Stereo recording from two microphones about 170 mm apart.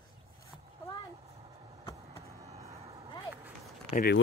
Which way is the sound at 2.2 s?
40° right (ahead or behind).